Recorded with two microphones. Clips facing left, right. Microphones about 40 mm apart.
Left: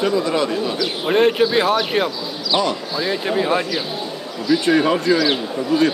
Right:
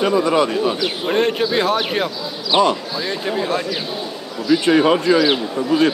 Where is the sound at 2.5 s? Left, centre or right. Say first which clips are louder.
Right 4 dB; right.